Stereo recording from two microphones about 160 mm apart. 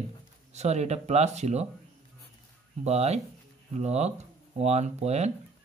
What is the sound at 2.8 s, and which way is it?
Speech, 45° right (ahead or behind).